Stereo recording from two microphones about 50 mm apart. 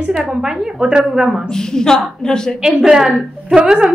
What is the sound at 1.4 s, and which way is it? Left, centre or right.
A woman's voice, centre.